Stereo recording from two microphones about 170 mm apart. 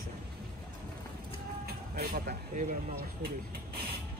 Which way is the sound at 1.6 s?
60° right (ahead or behind).